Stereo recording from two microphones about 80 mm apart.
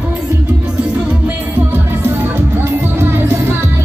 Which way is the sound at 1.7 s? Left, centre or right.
Right.